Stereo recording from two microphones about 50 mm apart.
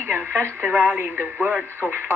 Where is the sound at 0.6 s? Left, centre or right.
Right.